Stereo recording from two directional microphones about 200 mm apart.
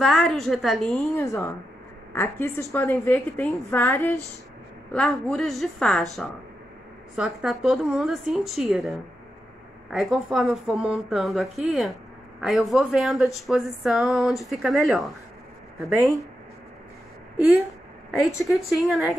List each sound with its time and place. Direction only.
0.0 s speech: centre (ahead or behind)
1.1 s a woman's voice: 15° left (ahead or behind)
16.0 s speech: 15° right (ahead or behind)
18.2 s speech: centre (ahead or behind)